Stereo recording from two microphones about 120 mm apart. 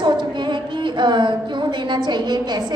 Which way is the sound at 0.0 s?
40° right (ahead or behind).